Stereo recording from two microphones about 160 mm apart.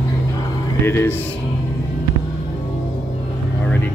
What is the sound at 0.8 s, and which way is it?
Speech, 15° left (ahead or behind).